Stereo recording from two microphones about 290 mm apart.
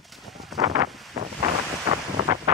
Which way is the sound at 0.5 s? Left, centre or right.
Centre.